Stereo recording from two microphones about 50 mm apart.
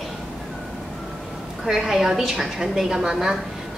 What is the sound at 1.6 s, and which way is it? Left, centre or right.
A woman's voice, centre.